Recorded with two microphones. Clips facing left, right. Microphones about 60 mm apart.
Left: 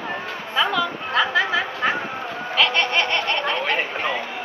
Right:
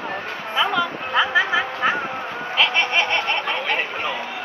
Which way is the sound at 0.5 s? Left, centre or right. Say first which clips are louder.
Even; centre.